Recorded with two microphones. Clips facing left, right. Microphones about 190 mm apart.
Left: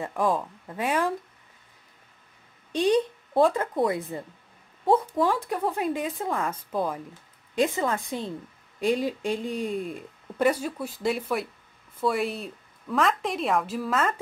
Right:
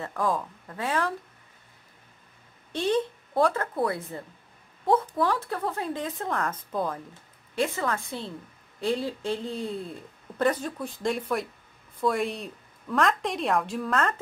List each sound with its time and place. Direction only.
0.0 s speech: 15° left (ahead or behind)
2.7 s a woman's voice: 15° left (ahead or behind)